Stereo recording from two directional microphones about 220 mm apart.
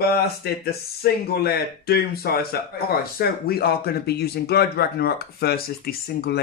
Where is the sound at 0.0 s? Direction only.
45° left (ahead or behind).